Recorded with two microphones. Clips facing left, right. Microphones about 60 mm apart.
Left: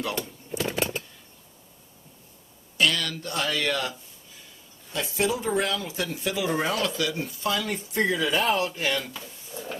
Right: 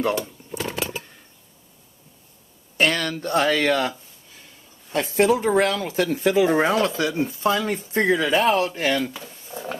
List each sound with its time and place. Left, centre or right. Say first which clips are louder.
2.8 s speech: right 4 dB; right
4.9 s speech: right 8 dB; right
9.5 s a sound: right 5 dB; right